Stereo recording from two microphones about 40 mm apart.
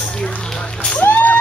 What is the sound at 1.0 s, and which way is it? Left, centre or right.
Vehicle, left.